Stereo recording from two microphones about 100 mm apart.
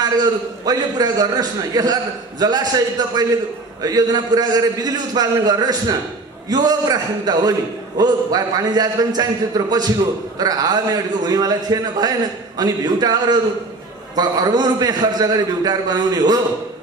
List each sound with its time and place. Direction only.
0.0 s a man's voice: 40° right (ahead or behind)